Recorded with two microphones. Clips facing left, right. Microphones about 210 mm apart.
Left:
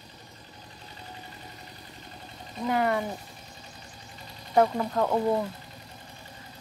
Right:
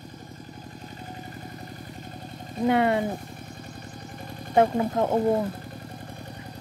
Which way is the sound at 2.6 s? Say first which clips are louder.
Right 4 dB; 25° right (ahead or behind).